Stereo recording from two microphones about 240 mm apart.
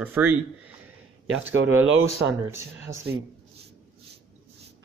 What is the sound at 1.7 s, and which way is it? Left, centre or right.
Speech, right.